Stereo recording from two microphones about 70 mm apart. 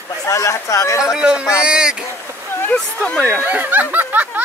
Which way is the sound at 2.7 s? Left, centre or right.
Centre.